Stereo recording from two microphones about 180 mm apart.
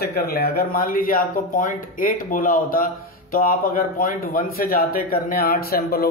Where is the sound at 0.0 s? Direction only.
60° left (ahead or behind).